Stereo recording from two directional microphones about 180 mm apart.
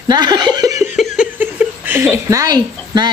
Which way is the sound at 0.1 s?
25° right (ahead or behind).